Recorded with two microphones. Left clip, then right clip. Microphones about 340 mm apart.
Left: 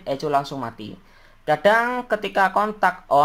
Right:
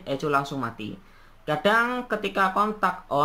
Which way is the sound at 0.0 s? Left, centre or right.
Centre.